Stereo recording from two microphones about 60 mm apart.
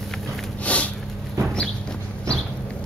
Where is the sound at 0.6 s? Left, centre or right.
Left.